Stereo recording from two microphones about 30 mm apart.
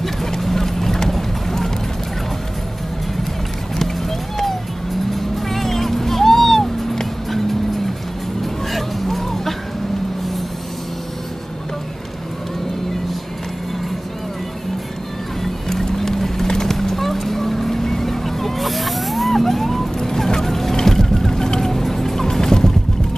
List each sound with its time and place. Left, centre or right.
0.0 s clip-clop: centre
5.1 s vehicle: centre
8.7 s music: centre
15.7 s music: centre
16.4 s vehicle: centre
16.7 s a sound: centre